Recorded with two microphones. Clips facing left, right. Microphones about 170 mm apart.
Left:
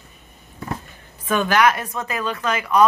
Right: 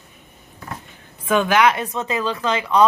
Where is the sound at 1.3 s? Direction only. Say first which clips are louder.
Right 1 dB; 15° right (ahead or behind).